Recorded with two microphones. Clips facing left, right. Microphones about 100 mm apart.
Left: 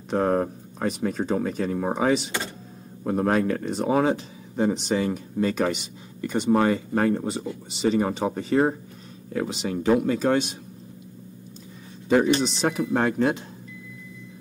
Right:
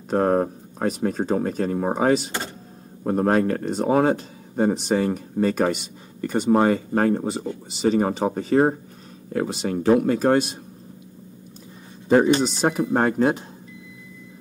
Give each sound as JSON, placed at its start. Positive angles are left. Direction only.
{"t": 0.1, "sound": "speech", "side_deg": -35}
{"t": 6.5, "sound": "speech", "side_deg": -30}
{"t": 12.1, "sound": "speech", "side_deg": -35}